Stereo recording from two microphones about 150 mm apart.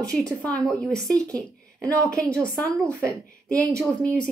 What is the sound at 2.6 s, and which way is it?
Speech, 20° right (ahead or behind).